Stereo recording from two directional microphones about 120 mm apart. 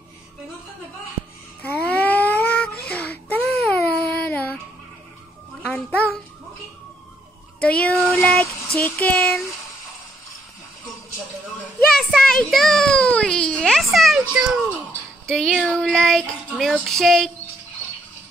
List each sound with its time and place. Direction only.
1.6 s a sound: 15° left (ahead or behind)
4.2 s music: 15° left (ahead or behind)
5.7 s a sound: 15° left (ahead or behind)
7.6 s child singing: 10° left (ahead or behind)
8.1 s a sound: 15° left (ahead or behind)
8.7 s speech: 15° left (ahead or behind)
12.0 s baby cry: centre (ahead or behind)
13.9 s children playing: centre (ahead or behind)
15.2 s child singing: 5° left (ahead or behind)